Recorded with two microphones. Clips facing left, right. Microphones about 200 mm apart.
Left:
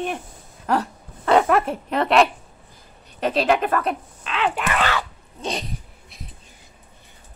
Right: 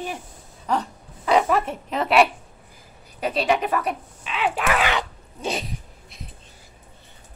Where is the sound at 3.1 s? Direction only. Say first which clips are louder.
Left 2 dB; centre (ahead or behind).